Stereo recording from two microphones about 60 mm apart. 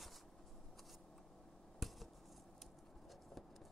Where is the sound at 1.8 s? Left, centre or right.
Centre.